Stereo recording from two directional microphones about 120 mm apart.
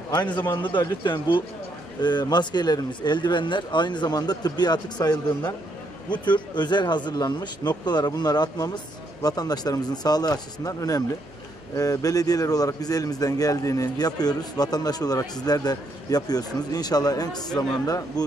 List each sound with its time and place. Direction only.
0.5 s a man's voice: 40° left (ahead or behind)